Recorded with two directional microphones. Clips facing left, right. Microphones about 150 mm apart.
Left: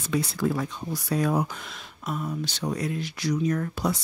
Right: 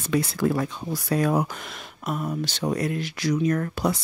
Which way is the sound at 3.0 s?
90° right.